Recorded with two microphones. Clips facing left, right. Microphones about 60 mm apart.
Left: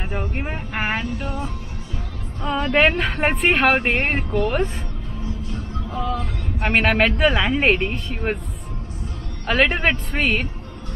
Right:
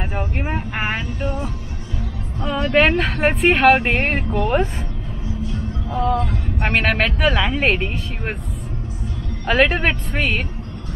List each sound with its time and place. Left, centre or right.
0.0 s vehicle: centre
3.0 s speech: centre
5.5 s music: centre
6.6 s speech: centre
9.5 s speech: centre